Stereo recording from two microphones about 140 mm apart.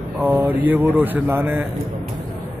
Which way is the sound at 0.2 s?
15° right (ahead or behind).